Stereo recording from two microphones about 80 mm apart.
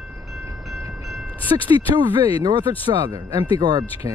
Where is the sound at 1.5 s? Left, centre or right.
Right.